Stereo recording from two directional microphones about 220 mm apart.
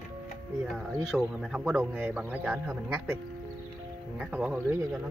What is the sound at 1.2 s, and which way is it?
Speech, 5° right (ahead or behind).